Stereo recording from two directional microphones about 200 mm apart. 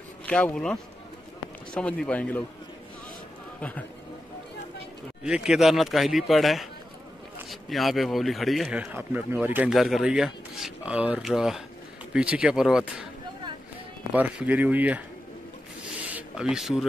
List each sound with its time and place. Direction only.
0.3 s speech: 5° left (ahead or behind)
5.2 s speech: 5° right (ahead or behind)
14.1 s speech: 5° right (ahead or behind)
16.0 s a sound: 5° right (ahead or behind)